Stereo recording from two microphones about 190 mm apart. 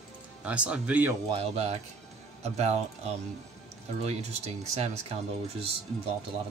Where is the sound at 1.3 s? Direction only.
35° right (ahead or behind).